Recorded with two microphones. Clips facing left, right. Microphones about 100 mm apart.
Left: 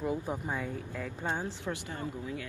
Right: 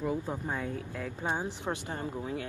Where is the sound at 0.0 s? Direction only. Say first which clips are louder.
Right 1 dB; 20° left (ahead or behind).